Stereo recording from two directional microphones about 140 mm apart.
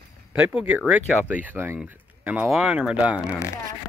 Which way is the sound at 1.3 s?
10° right (ahead or behind).